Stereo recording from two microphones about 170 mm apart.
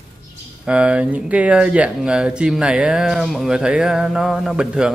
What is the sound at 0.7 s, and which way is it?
Speech, 5° right (ahead or behind).